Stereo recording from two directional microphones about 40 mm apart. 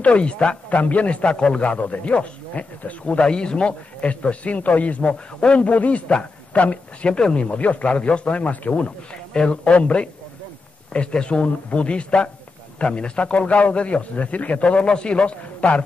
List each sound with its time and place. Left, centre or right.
0.0 s a man's voice: left
3.2 s a man's voice: left
9.3 s a man's voice: left